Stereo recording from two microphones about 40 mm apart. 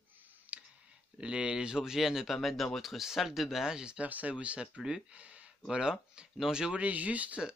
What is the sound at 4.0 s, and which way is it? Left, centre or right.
Speech, right.